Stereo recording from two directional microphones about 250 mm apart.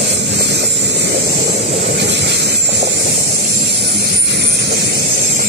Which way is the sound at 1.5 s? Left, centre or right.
Right.